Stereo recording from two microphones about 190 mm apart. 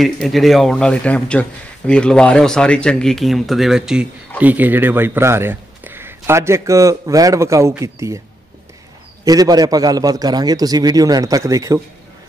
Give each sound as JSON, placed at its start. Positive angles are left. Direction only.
{"t": 0.0, "sound": "a man's voice", "side_deg": 0}
{"t": 9.2, "sound": "a man's voice", "side_deg": -20}